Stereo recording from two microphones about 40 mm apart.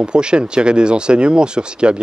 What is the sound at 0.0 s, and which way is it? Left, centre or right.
Speech, right.